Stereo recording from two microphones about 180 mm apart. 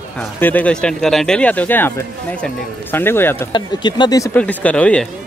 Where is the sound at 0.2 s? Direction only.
10° left (ahead or behind).